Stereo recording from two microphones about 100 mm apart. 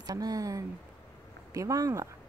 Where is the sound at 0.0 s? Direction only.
40° right (ahead or behind).